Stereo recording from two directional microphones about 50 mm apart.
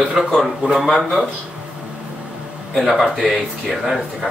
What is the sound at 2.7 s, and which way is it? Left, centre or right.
Speech, centre.